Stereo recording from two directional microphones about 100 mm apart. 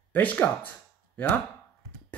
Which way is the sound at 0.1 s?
15° left (ahead or behind).